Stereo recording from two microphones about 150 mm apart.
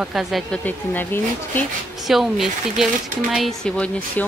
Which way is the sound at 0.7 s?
10° left (ahead or behind).